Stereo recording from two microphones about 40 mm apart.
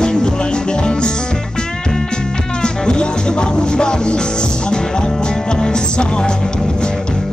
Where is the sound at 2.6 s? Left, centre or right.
Left.